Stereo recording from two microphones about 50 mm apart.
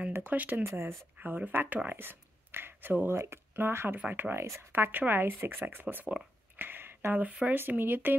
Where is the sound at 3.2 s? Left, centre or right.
Right.